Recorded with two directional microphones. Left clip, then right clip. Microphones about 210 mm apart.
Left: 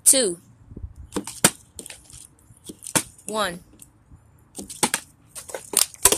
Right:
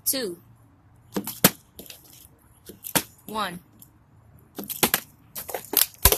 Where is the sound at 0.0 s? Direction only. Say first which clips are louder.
Left 9 dB; 30° left (ahead or behind).